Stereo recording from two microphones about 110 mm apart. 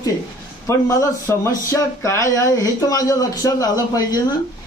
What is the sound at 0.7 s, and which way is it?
Speech, 30° left (ahead or behind).